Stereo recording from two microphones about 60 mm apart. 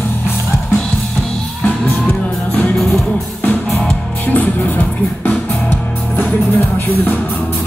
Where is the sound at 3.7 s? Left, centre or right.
Centre.